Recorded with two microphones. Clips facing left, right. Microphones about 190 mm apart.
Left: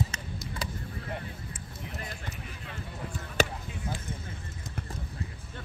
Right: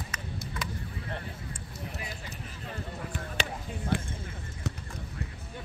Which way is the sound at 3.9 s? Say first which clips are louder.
Right 9 dB; 65° right (ahead or behind).